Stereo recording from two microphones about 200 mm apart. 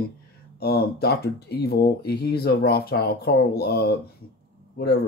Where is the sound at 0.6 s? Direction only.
50° left (ahead or behind).